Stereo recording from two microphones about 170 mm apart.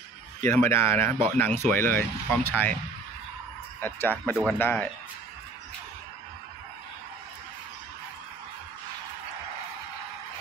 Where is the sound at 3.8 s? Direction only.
10° left (ahead or behind).